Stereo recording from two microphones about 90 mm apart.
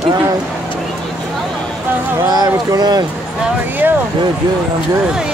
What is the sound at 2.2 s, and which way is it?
Speech, 45° right (ahead or behind).